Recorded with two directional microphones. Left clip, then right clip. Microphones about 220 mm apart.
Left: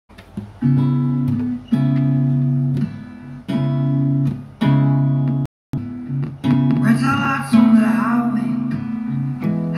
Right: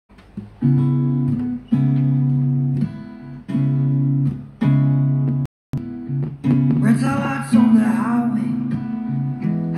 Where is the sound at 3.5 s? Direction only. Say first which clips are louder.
Left 2 dB; 25° left (ahead or behind).